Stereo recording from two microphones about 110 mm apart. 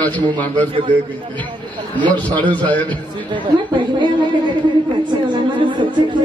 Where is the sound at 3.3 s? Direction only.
45° right (ahead or behind).